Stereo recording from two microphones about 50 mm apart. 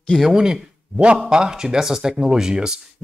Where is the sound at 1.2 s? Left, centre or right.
Centre.